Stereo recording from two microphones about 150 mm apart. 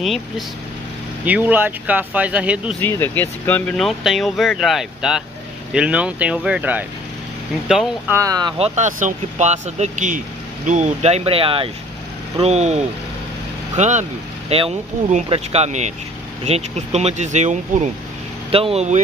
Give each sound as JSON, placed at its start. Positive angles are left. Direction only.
{"t": 1.2, "sound": "speech", "side_deg": -10}
{"t": 2.8, "sound": "speech", "side_deg": 10}
{"t": 8.1, "sound": "speech", "side_deg": -20}
{"t": 8.5, "sound": "speech", "side_deg": -45}
{"t": 18.5, "sound": "speech", "side_deg": -40}